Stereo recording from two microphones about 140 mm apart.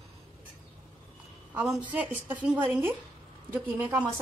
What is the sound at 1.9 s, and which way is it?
A woman's voice, 10° right (ahead or behind).